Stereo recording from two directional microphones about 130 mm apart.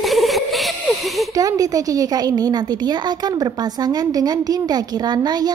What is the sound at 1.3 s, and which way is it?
A woman's voice, 25° right (ahead or behind).